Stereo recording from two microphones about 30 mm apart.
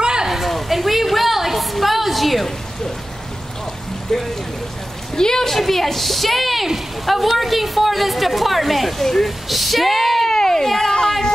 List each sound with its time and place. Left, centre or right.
0.0 s a sound: right
0.3 s a sound: centre
4.1 s a woman's voice: centre
9.0 s a woman's voice: centre
9.5 s a woman's voice: centre
10.3 s speech: centre